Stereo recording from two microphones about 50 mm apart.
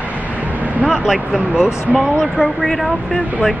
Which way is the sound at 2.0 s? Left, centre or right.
Centre.